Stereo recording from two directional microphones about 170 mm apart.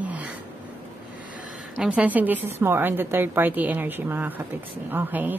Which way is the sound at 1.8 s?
10° right (ahead or behind).